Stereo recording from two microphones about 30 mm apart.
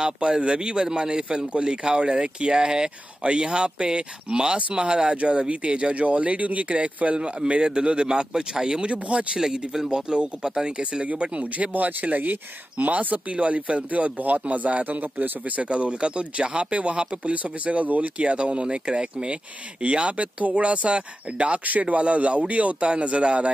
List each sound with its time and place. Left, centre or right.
0.0 s speech: right
5.1 s speech: right
7.6 s speech: right
8.1 s speech: right
8.8 s speech: right
9.4 s speech: centre
9.8 s speech: right
10.8 s speech: right
11.7 s speech: right
13.3 s speech: right
15.7 s speech: right
17.2 s speech: right
18.1 s speech: right
21.6 s speech: right